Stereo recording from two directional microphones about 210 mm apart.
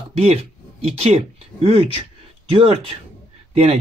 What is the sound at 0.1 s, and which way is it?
Speech, 30° right (ahead or behind).